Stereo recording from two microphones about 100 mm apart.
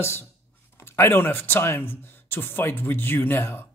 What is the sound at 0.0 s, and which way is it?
Speech, 25° left (ahead or behind).